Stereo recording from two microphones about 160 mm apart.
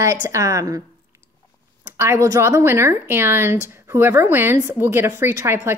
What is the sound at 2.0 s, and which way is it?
A woman's voice, 20° right (ahead or behind).